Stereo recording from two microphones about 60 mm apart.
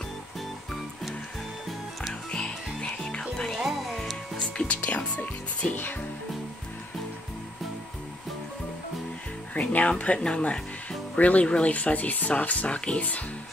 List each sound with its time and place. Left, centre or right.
2.3 s music: centre
3.5 s music: centre
4.6 s music: left
9.6 s speech: left